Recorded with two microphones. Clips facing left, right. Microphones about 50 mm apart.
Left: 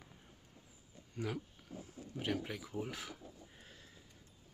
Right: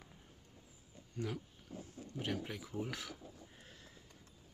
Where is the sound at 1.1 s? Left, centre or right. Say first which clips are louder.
Left 1 dB; centre.